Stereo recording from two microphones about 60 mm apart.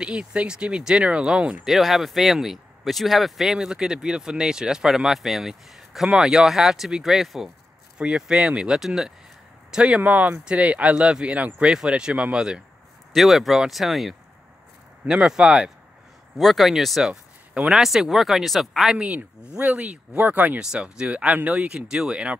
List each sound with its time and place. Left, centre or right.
0.0 s speech: centre
1.7 s speech: centre
9.7 s speech: centre
13.1 s speech: centre
15.0 s speech: centre
16.3 s speech: centre
18.9 s speech: right
20.5 s speech: centre